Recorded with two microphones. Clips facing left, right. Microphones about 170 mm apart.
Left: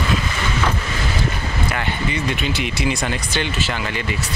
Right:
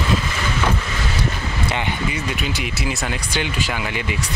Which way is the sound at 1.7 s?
10° right (ahead or behind).